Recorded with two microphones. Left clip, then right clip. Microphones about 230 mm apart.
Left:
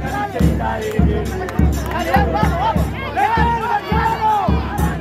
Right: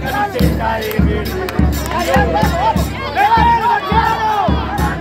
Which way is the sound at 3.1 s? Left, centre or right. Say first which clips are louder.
Right 5 dB; right.